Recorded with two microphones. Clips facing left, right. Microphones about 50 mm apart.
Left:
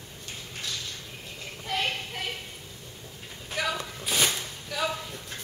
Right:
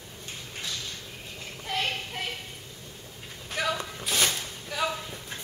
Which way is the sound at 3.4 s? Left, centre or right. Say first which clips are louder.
Right 1 dB; centre.